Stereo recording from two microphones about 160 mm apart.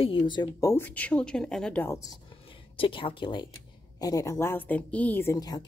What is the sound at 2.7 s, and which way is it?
Speech, 35° left (ahead or behind).